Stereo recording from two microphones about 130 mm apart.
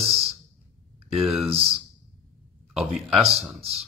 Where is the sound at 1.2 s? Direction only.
Centre (ahead or behind).